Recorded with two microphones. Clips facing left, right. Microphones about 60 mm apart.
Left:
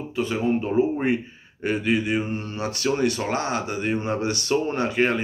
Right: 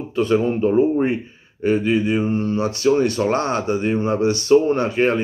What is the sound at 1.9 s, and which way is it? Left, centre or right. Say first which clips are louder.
Mantra: right 4 dB; left.